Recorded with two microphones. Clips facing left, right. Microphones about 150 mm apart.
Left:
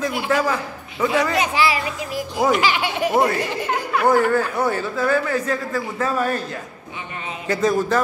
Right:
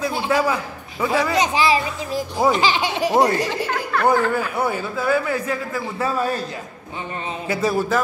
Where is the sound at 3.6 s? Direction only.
10° left (ahead or behind).